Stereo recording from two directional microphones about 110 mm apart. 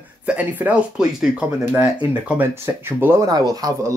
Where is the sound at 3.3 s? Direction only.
35° right (ahead or behind).